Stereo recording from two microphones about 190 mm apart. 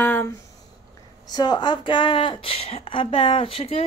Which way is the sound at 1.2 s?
20° left (ahead or behind).